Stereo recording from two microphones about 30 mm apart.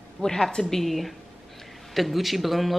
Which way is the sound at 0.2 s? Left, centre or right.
Centre.